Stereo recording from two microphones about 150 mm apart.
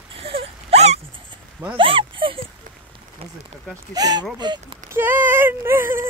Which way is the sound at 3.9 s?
25° right (ahead or behind).